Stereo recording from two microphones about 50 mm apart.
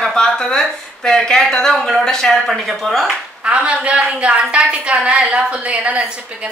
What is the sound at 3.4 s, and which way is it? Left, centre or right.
A woman's voice, right.